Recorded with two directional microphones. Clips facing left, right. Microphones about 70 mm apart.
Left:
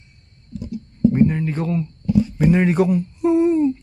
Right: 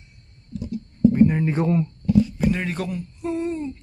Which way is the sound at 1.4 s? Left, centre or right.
Centre.